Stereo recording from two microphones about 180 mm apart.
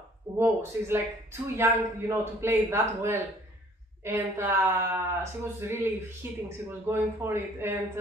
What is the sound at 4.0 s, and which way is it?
Speech, 15° right (ahead or behind).